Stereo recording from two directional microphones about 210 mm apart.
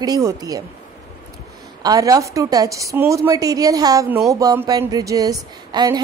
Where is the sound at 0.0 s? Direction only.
15° right (ahead or behind).